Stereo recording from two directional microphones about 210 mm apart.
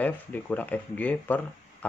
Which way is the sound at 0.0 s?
5° left (ahead or behind).